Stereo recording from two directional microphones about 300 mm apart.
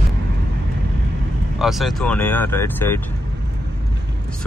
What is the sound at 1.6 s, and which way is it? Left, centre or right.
Speech, centre.